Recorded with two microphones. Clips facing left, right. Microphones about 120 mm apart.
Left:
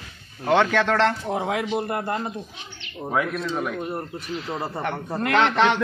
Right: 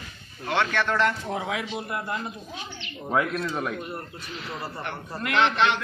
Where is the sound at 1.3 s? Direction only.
45° left (ahead or behind).